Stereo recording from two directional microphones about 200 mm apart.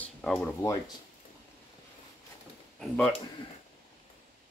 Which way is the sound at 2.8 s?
5° left (ahead or behind).